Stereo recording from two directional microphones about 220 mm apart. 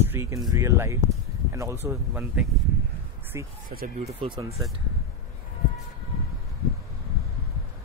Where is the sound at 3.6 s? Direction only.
40° right (ahead or behind).